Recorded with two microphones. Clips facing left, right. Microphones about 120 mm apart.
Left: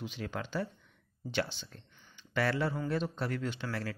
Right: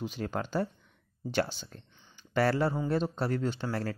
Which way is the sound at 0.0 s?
40° right (ahead or behind).